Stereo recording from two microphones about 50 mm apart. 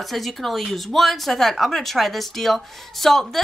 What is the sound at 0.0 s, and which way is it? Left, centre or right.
Speech, centre.